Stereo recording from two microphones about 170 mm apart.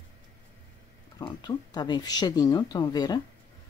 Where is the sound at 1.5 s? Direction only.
25° left (ahead or behind).